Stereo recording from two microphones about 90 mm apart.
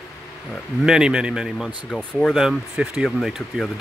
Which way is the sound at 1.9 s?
5° left (ahead or behind).